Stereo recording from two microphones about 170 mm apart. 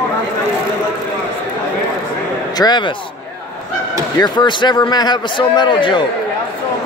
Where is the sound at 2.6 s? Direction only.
25° left (ahead or behind).